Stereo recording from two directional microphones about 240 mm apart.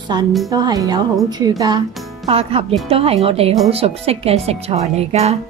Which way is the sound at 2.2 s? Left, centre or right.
Right.